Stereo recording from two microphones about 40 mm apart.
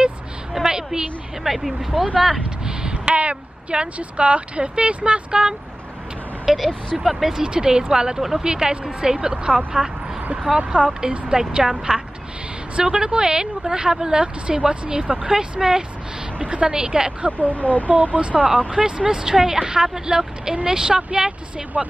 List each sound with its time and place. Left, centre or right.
0.5 s a sound: centre
1.4 s speech: centre
2.6 s a woman's voice: right
6.4 s speech: centre
7.4 s a woman's voice: right
16.3 s a woman's voice: right
17.5 s speech: left
17.8 s a woman's voice: right
19.0 s a woman's voice: centre